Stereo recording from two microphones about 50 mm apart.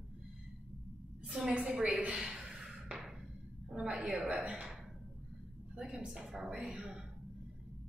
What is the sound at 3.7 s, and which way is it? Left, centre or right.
A woman's voice, centre.